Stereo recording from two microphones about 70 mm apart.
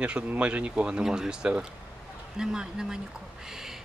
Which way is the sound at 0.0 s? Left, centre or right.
Centre.